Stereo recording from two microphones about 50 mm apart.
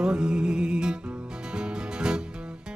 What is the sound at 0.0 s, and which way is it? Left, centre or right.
Music, centre.